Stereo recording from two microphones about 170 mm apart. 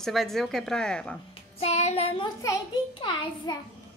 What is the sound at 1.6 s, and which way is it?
Child singing, 40° left (ahead or behind).